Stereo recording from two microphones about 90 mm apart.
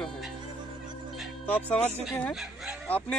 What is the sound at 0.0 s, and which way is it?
Music, centre (ahead or behind).